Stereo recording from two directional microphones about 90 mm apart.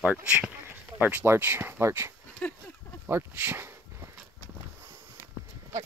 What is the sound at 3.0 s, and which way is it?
Speech, 25° right (ahead or behind).